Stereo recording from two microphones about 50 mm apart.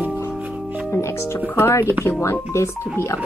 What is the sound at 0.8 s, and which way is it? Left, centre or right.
Speech, left.